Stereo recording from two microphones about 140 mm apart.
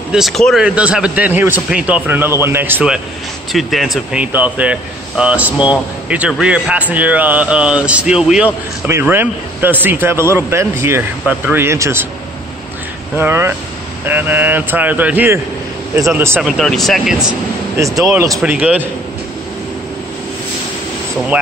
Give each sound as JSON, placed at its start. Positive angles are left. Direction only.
{"t": 0.1, "sound": "speech", "side_deg": 0}
{"t": 0.7, "sound": "a man's voice", "side_deg": -10}
{"t": 3.5, "sound": "a man's voice", "side_deg": 0}
{"t": 13.1, "sound": "a man's voice", "side_deg": -15}
{"t": 16.3, "sound": "speech", "side_deg": 0}
{"t": 17.7, "sound": "speech", "side_deg": -20}
{"t": 18.4, "sound": "a man's voice", "side_deg": -10}